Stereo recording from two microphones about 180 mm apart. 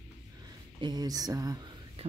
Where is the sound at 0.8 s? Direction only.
20° right (ahead or behind).